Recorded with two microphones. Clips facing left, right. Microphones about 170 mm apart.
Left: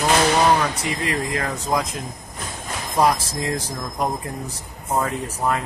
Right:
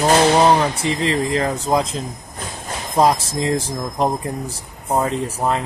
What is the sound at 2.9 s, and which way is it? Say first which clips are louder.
Speech: right 3 dB; 25° right (ahead or behind).